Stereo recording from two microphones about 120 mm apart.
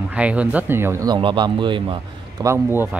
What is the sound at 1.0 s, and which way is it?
Speech, 40° right (ahead or behind).